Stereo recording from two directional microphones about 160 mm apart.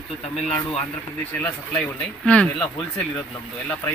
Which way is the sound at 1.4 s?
10° left (ahead or behind).